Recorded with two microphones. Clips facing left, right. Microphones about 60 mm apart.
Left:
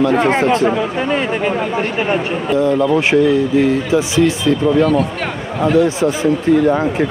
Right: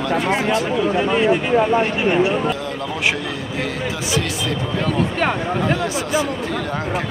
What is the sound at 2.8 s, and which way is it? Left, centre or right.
A man's voice, left.